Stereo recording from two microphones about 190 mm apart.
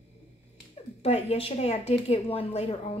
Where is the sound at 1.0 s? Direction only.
35° left (ahead or behind).